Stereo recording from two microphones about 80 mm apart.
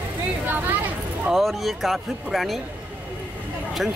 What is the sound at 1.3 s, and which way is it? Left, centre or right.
Speech, centre.